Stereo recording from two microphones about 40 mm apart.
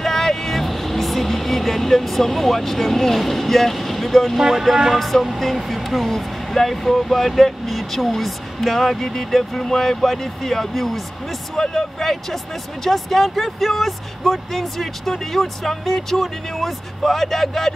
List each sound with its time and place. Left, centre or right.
0.0 s vehicle: centre
4.4 s speech: centre
4.9 s speech: centre